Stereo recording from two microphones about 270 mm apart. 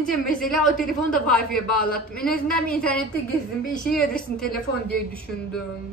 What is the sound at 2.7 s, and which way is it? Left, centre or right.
A woman's voice, centre.